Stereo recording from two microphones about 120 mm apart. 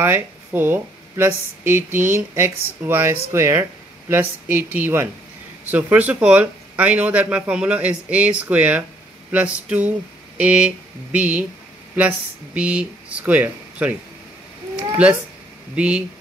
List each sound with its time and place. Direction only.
0.0 s a man's voice: 20° right (ahead or behind)
12.5 s speech: 10° right (ahead or behind)
15.7 s a man's voice: 10° right (ahead or behind)